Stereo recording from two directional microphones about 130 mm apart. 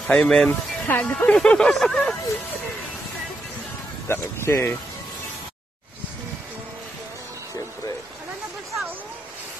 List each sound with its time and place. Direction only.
0.0 s speech: 5° left (ahead or behind)
0.8 s speech: 15° left (ahead or behind)
1.1 s speech: 5° left (ahead or behind)
4.1 s speech: 20° left (ahead or behind)